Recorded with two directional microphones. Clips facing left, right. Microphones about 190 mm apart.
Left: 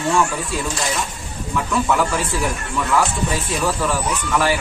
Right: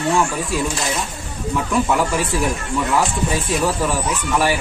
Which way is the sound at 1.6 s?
15° right (ahead or behind).